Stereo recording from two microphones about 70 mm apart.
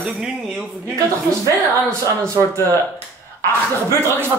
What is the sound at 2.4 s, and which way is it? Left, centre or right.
Speech, right.